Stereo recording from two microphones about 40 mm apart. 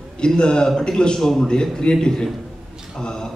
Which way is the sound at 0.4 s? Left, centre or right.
Left.